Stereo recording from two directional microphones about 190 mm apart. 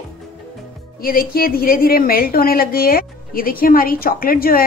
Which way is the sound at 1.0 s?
50° left (ahead or behind).